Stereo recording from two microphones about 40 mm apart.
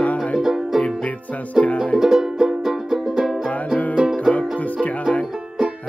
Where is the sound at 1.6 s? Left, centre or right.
Centre.